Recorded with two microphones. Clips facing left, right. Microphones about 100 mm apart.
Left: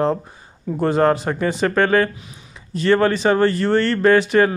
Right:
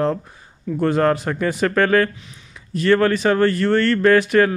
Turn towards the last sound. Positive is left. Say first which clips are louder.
# even
turn(degrees=0)  # may be behind; listen again after turning